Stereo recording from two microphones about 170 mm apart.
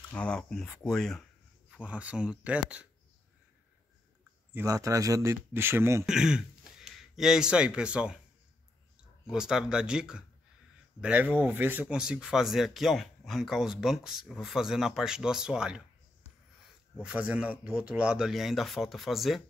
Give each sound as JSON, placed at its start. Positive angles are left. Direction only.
{"t": 0.1, "sound": "speech", "side_deg": 5}
{"t": 1.7, "sound": "speech", "side_deg": -5}
{"t": 4.6, "sound": "speech", "side_deg": -20}
{"t": 6.0, "sound": "speech", "side_deg": -5}
{"t": 9.2, "sound": "speech", "side_deg": -5}
{"t": 17.0, "sound": "speech", "side_deg": -5}